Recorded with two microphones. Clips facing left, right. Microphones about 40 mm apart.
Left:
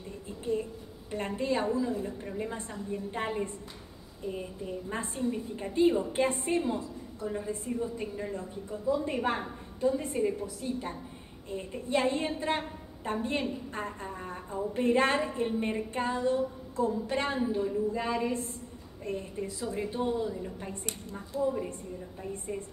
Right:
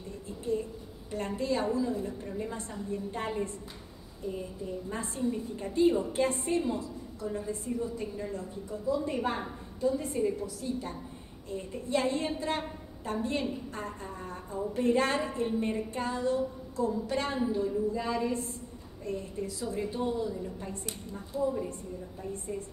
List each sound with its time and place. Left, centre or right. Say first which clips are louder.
1.1 s a woman's voice: left 1 dB; left